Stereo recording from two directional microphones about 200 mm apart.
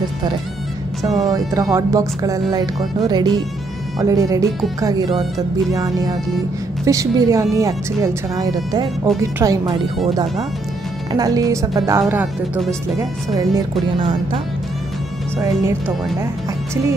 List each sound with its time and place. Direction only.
1.3 s speech: 15° right (ahead or behind)
11.1 s speech: 20° right (ahead or behind)